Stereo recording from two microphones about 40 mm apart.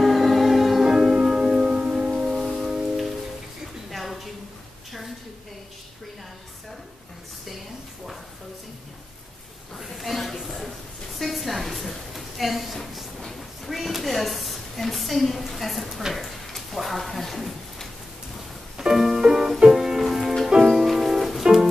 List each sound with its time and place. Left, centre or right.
0.0 s music: centre
1.1 s music: centre
2.0 s music: centre
2.3 s music: centre
3.9 s a sound: centre
9.8 s a sound: centre
18.8 s music: centre